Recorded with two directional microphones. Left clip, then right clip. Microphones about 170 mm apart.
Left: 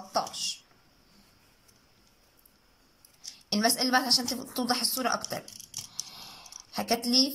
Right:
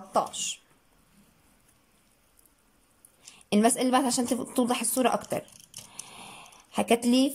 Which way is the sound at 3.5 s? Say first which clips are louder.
Right 2 dB; 25° right (ahead or behind).